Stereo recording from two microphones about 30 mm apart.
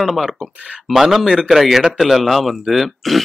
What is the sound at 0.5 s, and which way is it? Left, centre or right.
Speech, right.